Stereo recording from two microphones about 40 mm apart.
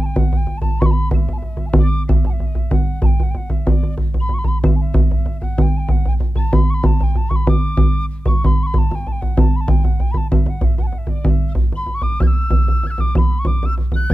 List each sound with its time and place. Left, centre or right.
0.0 s music: left